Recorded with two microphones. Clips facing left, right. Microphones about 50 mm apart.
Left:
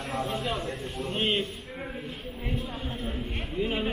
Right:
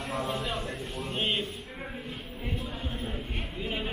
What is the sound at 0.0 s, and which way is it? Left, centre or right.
A man's voice, centre.